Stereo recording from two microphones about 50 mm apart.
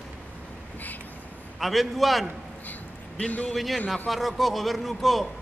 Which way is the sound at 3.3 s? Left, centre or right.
Left.